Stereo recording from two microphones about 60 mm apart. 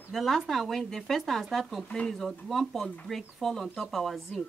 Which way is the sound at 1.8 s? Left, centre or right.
Centre.